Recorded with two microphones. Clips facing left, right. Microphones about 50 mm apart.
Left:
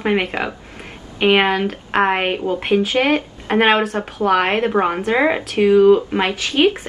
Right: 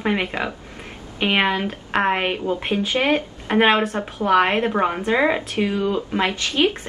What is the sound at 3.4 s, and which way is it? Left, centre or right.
Speech, centre.